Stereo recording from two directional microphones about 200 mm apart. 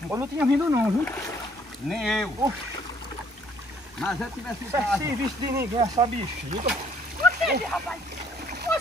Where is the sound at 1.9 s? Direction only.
Centre (ahead or behind).